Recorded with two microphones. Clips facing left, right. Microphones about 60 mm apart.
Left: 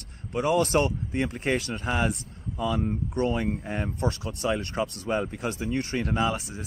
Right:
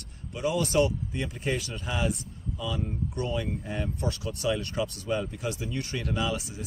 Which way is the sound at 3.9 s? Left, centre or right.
Left.